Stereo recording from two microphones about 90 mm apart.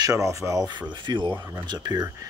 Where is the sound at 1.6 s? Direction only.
50° right (ahead or behind).